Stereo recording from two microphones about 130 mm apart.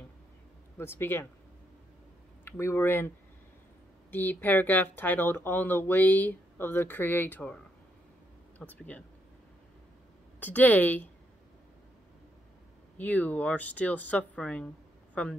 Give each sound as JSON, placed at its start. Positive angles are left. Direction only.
{"t": 0.7, "sound": "speech", "side_deg": 20}
{"t": 2.4, "sound": "speech", "side_deg": 20}
{"t": 4.1, "sound": "speech", "side_deg": 15}
{"t": 10.4, "sound": "speech", "side_deg": 15}
{"t": 12.9, "sound": "speech", "side_deg": 10}